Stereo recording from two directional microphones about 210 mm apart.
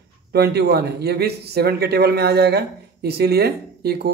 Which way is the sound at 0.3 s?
50° right (ahead or behind).